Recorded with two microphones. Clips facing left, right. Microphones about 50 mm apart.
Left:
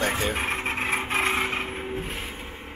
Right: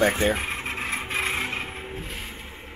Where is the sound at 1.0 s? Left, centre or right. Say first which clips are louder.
Left 2 dB; left.